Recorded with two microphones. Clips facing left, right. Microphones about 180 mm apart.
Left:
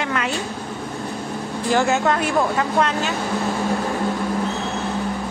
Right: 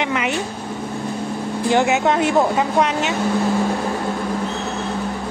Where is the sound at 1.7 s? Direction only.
20° right (ahead or behind).